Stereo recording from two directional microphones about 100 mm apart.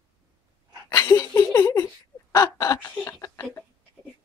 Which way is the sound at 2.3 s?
35° left (ahead or behind).